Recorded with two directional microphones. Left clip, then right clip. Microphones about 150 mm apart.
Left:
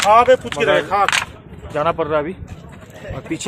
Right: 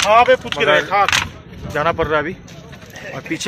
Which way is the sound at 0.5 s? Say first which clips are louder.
Right 2 dB; 10° left (ahead or behind).